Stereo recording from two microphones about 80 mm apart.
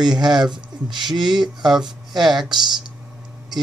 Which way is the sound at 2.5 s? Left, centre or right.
Right.